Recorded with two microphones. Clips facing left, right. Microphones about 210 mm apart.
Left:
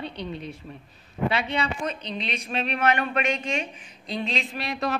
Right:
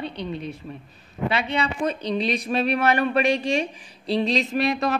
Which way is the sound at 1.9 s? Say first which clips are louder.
Right 8 dB; 35° right (ahead or behind).